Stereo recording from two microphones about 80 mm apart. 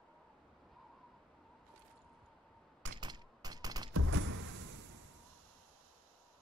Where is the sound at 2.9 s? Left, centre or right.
Right.